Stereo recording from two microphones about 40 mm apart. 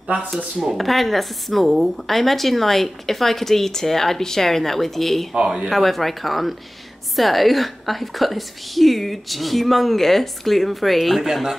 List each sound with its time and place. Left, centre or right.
0.6 s speech: centre
5.3 s speech: right
5.7 s speech: centre